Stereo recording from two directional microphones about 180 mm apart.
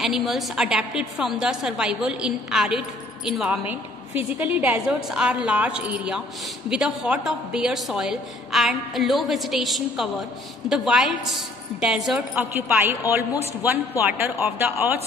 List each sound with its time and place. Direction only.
0.0 s a woman's voice: centre (ahead or behind)